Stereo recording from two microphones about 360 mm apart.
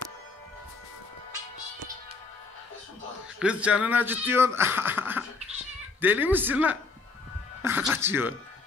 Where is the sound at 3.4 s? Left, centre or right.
Centre.